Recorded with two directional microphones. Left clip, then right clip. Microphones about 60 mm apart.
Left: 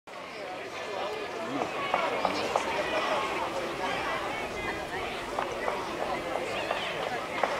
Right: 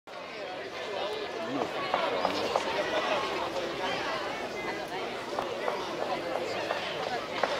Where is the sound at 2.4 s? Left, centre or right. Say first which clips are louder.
Even; right.